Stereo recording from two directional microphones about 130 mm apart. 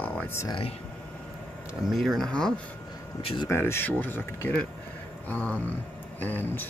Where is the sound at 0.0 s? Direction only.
15° left (ahead or behind).